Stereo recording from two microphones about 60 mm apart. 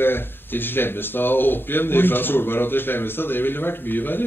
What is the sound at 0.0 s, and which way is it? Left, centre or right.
Speech, left.